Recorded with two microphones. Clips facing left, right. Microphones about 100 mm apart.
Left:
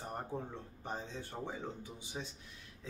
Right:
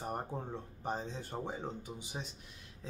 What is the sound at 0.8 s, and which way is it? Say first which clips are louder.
A man's voice: right 4 dB; 20° right (ahead or behind).